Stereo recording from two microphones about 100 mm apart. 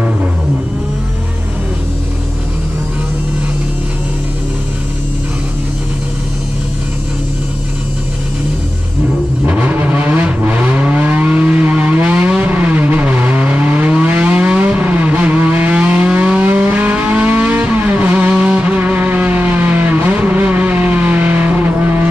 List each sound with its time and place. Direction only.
9.5 s vehicle: 15° right (ahead or behind)